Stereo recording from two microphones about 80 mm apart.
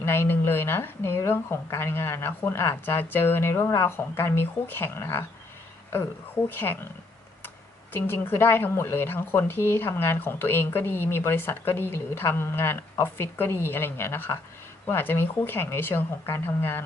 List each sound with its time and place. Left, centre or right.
0.0 s speech: left
6.5 s speech: left